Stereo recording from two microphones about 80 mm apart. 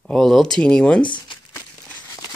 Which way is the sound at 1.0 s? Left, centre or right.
Left.